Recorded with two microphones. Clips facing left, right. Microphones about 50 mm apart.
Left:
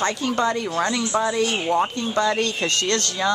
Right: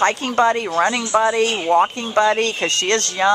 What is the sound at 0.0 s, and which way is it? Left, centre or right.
Speech, right.